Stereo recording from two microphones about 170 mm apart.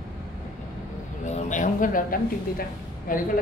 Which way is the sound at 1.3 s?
45° left (ahead or behind).